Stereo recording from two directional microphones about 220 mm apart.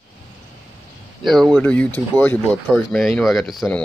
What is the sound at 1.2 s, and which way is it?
Speech, centre (ahead or behind).